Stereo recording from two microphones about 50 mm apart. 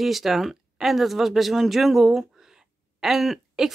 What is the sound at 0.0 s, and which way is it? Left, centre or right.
Speech, centre.